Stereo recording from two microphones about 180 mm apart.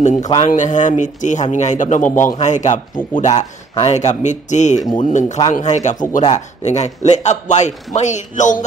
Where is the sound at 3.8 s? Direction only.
40° left (ahead or behind).